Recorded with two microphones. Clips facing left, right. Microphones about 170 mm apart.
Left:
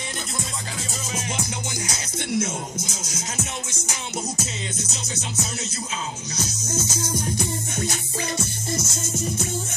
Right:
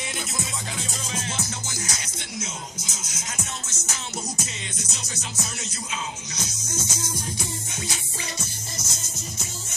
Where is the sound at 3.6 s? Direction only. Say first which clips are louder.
Left 3 dB; 15° left (ahead or behind).